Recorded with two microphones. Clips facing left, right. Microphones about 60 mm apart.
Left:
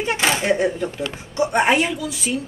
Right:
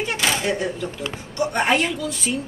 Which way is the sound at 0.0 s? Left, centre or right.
Left.